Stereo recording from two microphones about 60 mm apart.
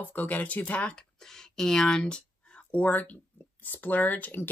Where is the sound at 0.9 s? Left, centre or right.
Centre.